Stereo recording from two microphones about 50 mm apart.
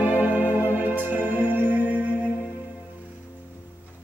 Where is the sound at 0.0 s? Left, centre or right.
Right.